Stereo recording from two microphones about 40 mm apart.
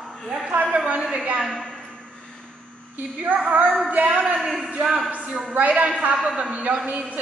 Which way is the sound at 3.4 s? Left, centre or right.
Right.